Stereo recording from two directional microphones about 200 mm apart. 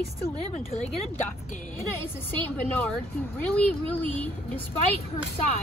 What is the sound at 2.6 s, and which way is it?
Speech, 10° left (ahead or behind).